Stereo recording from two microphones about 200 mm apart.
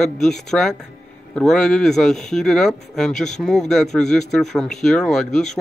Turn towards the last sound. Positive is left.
turn(degrees=0)  # may be behind; listen again after turning